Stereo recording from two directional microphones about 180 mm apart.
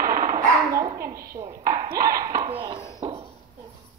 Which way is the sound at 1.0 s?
55° right (ahead or behind).